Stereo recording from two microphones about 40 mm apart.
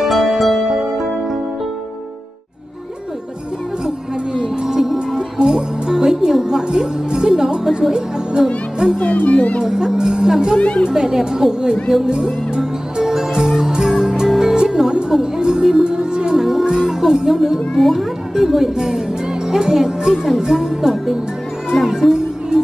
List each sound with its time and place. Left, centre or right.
0.0 s music: centre
3.8 s music: centre
9.0 s music: left
9.6 s music: centre
17.7 s music: centre
18.3 s music: centre